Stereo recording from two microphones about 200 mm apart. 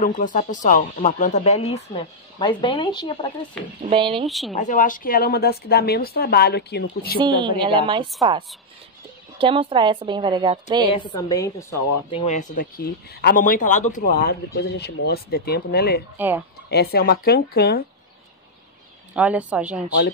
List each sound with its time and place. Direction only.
0.0 s speech: 40° left (ahead or behind); by 3.3 s 25° left (ahead or behind)
3.6 s speech: centre (ahead or behind)
3.9 s a woman's voice: 25° right (ahead or behind)
4.3 s speech: centre (ahead or behind)
4.6 s speech: 40° left (ahead or behind)
7.2 s a woman's voice: 25° right (ahead or behind)
10.9 s a woman's voice: 25° left (ahead or behind)
12.1 s speech: 25° left (ahead or behind)
12.4 s speech: 45° left (ahead or behind)
16.2 s speech: 10° right (ahead or behind)
16.7 s speech: 50° left (ahead or behind)
19.1 s speech: 5° right (ahead or behind)